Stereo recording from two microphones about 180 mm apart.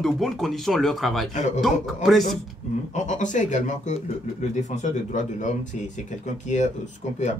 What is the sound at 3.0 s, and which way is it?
Speech, 45° left (ahead or behind).